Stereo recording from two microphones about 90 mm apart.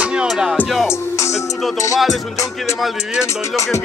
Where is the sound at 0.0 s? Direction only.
10° right (ahead or behind).